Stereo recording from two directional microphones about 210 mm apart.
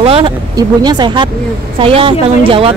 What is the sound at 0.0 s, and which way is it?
Speech, 25° right (ahead or behind).